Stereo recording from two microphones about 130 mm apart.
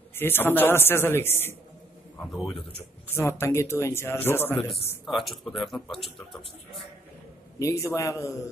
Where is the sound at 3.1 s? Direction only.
20° left (ahead or behind).